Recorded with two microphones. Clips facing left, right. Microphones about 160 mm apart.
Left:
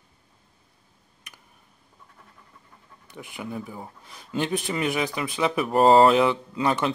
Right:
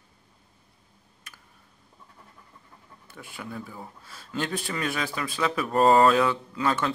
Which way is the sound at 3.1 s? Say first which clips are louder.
Left 4 dB; 15° left (ahead or behind).